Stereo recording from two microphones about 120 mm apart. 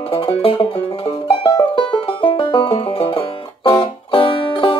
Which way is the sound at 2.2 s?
45° left (ahead or behind).